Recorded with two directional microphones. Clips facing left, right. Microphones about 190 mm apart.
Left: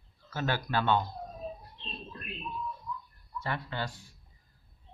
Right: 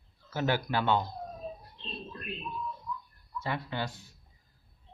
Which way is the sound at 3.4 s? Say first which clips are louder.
Right 1 dB; 15° right (ahead or behind).